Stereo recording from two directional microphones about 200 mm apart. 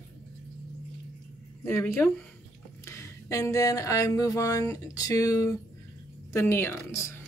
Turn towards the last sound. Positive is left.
turn(degrees=15)  # may be behind; listen again after turning